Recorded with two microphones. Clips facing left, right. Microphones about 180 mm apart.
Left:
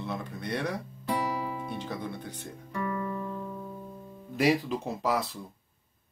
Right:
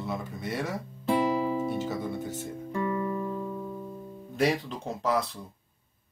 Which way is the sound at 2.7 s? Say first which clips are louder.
Right 3 dB; 20° right (ahead or behind).